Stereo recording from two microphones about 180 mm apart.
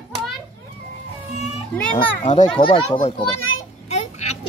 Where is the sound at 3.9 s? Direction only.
40° left (ahead or behind).